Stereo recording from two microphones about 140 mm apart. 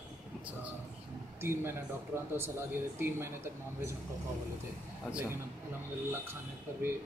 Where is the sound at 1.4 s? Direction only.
15° right (ahead or behind).